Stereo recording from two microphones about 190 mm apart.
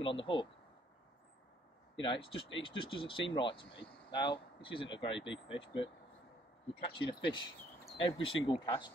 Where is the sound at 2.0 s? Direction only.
25° left (ahead or behind).